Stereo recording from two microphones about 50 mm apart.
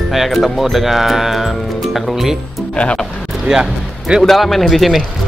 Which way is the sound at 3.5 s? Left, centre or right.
Centre.